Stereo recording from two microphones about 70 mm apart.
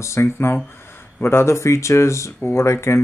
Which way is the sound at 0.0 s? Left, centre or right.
Left.